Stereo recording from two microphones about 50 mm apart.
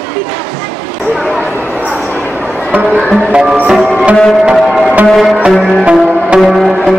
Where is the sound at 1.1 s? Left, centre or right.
Centre.